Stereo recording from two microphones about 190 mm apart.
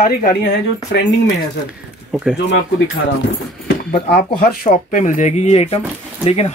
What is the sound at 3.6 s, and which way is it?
Speech, 55° left (ahead or behind).